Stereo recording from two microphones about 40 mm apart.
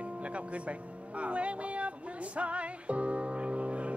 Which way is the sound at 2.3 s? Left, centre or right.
Right.